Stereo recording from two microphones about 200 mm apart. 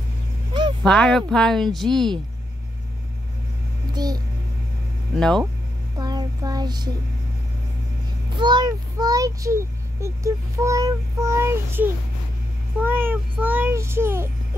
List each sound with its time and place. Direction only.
0.8 s speech: centre (ahead or behind)
3.9 s a sound: 20° right (ahead or behind)
5.1 s speech: 5° left (ahead or behind)
5.9 s child singing: 20° right (ahead or behind)
8.3 s a child's voice: 20° right (ahead or behind)